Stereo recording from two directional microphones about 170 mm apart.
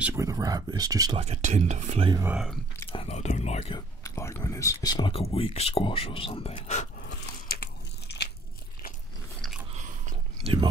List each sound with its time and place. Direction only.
0.0 s speech: 15° right (ahead or behind)
1.2 s speech: 40° right (ahead or behind)
2.2 s speech: centre (ahead or behind)
2.9 s speech: 35° left (ahead or behind)
4.0 s speech: 15° left (ahead or behind); by 7.1 s 45° left (ahead or behind)
7.1 s biting: 65° left (ahead or behind)
9.4 s biting: 5° right (ahead or behind)
9.8 s whispering: 45° right (ahead or behind)